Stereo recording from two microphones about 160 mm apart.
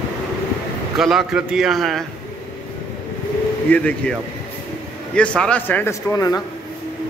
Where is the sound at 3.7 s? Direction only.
10° left (ahead or behind).